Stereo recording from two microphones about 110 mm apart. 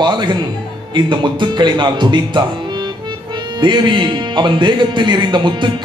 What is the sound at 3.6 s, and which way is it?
Speech, 45° right (ahead or behind).